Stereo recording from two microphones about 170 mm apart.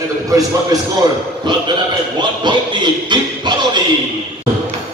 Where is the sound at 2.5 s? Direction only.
25° right (ahead or behind).